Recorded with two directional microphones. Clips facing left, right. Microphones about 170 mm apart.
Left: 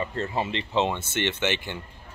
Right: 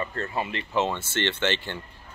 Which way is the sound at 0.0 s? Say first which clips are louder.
Left 2 dB; 25° left (ahead or behind).